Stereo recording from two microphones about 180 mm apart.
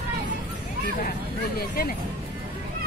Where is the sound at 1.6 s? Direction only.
55° left (ahead or behind).